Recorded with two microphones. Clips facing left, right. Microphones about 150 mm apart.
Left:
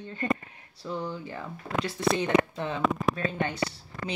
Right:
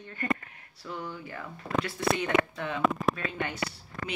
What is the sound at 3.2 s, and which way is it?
Speech, 30° left (ahead or behind).